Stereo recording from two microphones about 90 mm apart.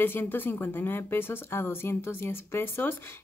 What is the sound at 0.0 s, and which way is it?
Speech, 25° left (ahead or behind).